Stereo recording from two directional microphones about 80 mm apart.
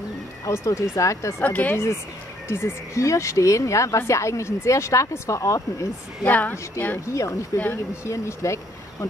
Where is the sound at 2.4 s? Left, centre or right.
Left.